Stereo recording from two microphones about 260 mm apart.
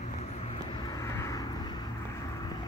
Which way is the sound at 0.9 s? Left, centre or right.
Centre.